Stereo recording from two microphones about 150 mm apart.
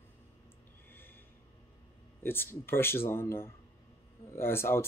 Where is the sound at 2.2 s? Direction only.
15° left (ahead or behind).